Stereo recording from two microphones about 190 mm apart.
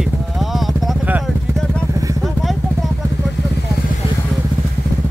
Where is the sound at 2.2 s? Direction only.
Centre (ahead or behind).